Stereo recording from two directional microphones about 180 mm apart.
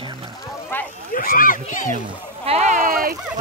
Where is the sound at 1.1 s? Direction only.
50° left (ahead or behind).